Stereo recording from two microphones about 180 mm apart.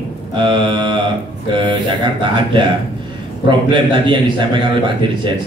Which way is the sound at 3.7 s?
25° right (ahead or behind).